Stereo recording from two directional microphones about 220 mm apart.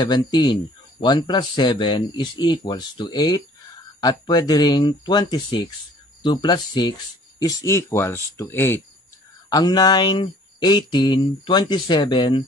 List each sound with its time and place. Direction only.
0.0 s speech: 20° left (ahead or behind)